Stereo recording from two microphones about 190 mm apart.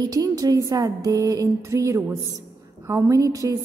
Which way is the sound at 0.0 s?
20° right (ahead or behind).